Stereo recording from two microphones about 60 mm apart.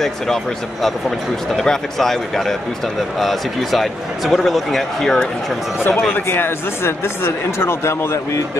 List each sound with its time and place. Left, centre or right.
1.6 s speech: centre
5.8 s speech: left